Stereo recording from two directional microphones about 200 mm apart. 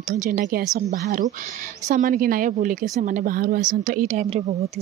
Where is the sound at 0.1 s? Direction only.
45° right (ahead or behind).